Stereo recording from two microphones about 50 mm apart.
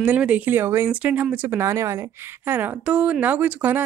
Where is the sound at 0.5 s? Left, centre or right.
Right.